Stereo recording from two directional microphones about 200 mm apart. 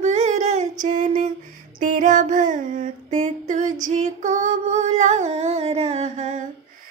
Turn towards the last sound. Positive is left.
turn(degrees=-35)  # may be behind; listen again after turning